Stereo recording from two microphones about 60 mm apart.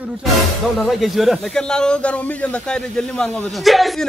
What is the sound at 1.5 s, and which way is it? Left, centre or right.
Speech, centre.